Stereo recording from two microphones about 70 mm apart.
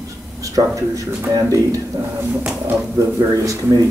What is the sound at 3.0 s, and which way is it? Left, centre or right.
Speech, right.